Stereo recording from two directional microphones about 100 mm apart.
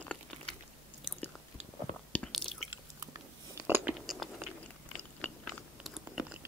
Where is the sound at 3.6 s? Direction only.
20° right (ahead or behind).